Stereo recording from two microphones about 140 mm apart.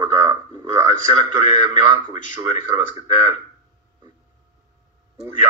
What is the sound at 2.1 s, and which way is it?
Speech, 50° left (ahead or behind).